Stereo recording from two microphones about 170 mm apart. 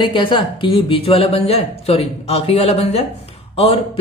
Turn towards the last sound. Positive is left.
turn(degrees=35)  # may be behind; listen again after turning